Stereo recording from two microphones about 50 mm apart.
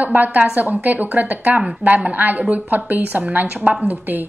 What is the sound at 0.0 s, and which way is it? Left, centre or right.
A woman's voice, right.